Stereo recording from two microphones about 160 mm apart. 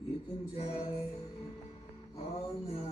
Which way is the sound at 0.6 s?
40° left (ahead or behind).